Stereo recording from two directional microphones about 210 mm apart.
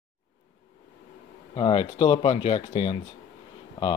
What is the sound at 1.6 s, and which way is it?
Speech, 25° left (ahead or behind).